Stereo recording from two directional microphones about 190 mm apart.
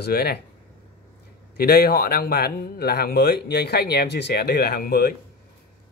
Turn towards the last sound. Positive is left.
turn(degrees=55)  # may be behind; listen again after turning